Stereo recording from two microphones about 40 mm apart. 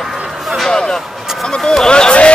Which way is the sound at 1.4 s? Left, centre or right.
Centre.